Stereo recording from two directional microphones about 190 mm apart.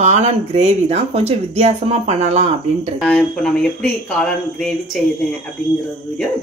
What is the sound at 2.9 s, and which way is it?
Speech, 5° left (ahead or behind).